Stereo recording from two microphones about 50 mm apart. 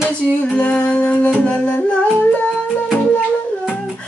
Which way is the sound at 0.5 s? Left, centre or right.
Left.